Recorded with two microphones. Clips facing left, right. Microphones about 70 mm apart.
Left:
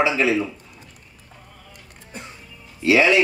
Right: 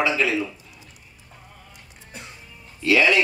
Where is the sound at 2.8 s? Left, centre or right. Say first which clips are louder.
Left 2 dB; left.